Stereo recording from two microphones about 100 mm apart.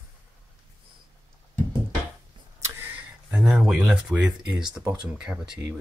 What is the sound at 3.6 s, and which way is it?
Speech, 10° right (ahead or behind).